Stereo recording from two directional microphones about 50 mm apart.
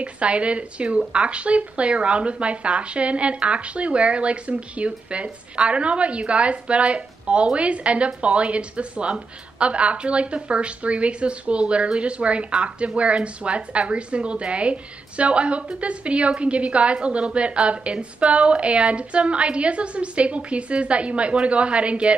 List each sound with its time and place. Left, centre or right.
0.0 s speech: right